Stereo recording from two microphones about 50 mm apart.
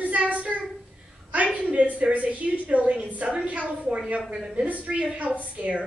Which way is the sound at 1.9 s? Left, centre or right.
Right.